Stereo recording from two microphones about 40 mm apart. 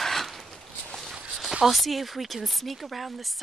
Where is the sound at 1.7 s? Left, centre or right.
Centre.